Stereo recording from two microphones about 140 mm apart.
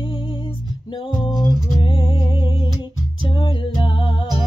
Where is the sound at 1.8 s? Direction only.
35° left (ahead or behind).